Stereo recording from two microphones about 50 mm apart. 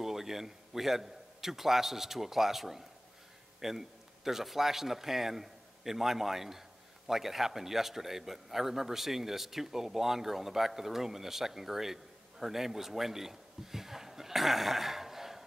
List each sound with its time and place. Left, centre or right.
0.0 s a man's voice: centre